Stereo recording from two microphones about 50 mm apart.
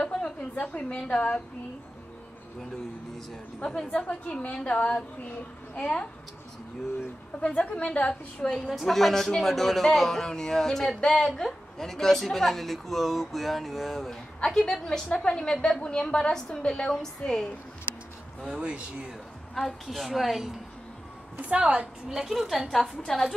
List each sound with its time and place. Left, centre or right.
0.0 s a sound: left
3.6 s a woman's voice: centre
7.3 s a woman's voice: left
8.5 s a woman's voice: centre
18.4 s a woman's voice: centre
19.5 s speech: centre
21.4 s a woman's voice: right
22.1 s speech: centre